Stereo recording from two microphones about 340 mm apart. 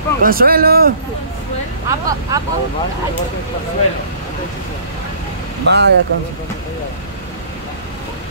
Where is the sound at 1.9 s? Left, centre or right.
Centre.